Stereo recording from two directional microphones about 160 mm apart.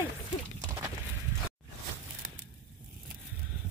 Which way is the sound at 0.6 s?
20° right (ahead or behind).